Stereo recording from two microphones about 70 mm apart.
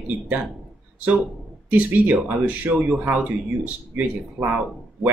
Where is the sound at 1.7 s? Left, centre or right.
Right.